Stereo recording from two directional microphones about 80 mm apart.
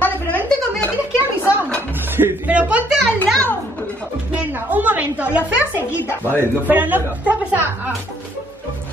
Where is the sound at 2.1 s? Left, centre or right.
Right.